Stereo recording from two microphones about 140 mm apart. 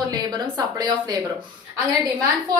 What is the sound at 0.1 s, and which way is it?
A woman's voice, 30° right (ahead or behind).